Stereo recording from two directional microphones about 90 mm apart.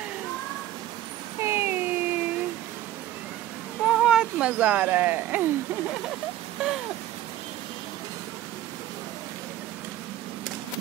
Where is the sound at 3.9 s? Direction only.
10° right (ahead or behind).